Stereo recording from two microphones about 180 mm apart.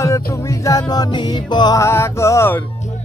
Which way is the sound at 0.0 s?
15° left (ahead or behind).